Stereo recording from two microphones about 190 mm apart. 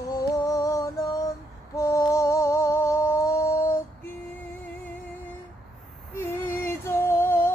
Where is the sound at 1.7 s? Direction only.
15° left (ahead or behind).